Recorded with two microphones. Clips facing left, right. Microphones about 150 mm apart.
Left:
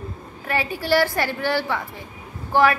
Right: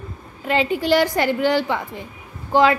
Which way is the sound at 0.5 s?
20° right (ahead or behind).